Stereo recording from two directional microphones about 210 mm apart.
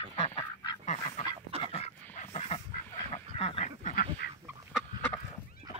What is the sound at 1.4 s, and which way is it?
Duck, 25° right (ahead or behind).